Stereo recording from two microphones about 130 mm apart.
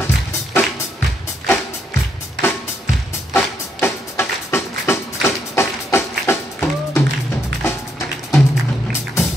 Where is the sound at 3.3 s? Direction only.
20° left (ahead or behind).